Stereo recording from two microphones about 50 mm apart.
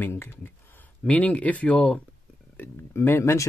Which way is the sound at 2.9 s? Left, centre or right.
Left.